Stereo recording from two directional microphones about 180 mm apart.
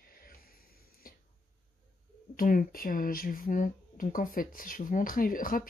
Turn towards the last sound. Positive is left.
turn(degrees=50)  # may be behind; listen again after turning